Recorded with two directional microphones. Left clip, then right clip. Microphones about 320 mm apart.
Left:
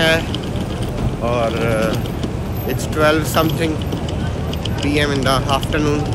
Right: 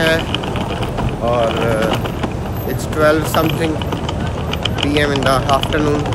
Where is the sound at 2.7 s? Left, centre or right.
Centre.